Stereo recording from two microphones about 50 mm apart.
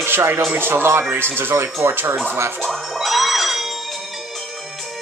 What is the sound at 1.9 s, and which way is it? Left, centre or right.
Speech, right.